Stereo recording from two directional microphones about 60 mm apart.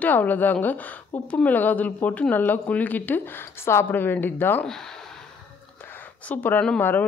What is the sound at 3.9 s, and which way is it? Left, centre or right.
Speech, left.